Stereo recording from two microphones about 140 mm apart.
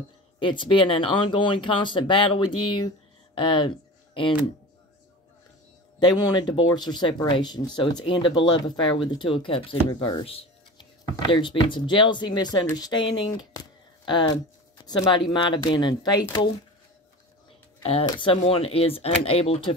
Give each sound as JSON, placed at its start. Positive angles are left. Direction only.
{"t": 0.4, "sound": "speech", "side_deg": 35}
{"t": 5.9, "sound": "speech", "side_deg": 30}
{"t": 18.0, "sound": "speech", "side_deg": 35}